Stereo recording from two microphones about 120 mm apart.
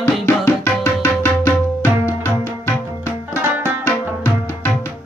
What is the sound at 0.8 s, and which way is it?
Tabla, 25° left (ahead or behind).